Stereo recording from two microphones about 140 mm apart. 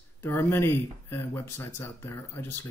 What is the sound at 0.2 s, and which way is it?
Speech, 15° left (ahead or behind).